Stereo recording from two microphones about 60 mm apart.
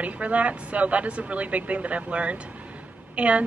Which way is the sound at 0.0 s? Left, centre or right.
Right.